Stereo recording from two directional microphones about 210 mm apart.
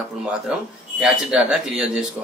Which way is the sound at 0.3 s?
5° right (ahead or behind).